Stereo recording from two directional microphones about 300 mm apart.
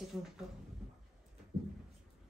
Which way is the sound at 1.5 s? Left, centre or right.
Right.